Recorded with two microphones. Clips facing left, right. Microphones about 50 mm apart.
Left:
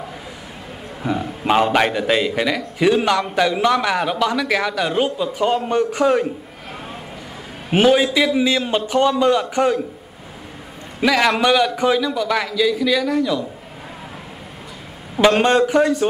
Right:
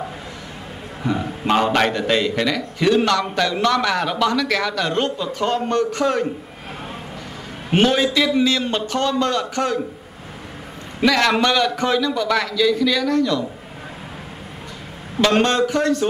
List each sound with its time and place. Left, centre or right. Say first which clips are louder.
1.4 s a man's voice: left 1 dB; centre
7.7 s a man's voice: left 2 dB; centre
11.0 s a man's voice: even; centre
15.4 s a man's voice: left 3 dB; centre